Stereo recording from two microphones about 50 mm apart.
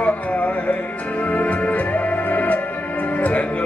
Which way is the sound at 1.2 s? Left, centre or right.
Left.